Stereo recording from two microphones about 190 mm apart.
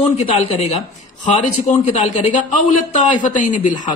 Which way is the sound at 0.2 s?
30° left (ahead or behind).